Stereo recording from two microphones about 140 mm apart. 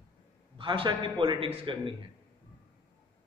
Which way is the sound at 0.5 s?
35° right (ahead or behind).